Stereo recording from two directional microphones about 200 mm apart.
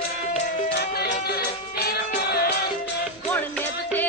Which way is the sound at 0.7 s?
55° left (ahead or behind).